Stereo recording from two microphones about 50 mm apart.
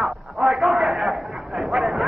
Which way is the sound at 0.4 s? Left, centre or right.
Centre.